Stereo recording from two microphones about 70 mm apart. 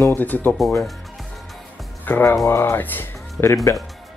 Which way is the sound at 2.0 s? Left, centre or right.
Left.